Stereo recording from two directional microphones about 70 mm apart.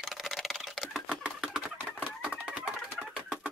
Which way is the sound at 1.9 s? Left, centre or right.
Right.